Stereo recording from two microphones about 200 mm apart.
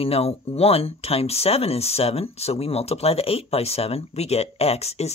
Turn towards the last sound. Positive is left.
turn(degrees=30)  # may be behind; listen again after turning